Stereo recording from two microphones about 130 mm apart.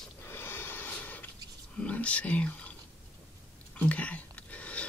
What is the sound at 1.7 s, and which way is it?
Speech, 10° left (ahead or behind).